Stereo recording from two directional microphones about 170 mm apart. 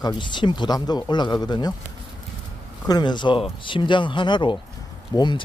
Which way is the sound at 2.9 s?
25° left (ahead or behind).